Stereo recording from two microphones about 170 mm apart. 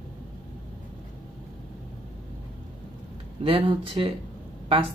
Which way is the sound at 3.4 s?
30° right (ahead or behind).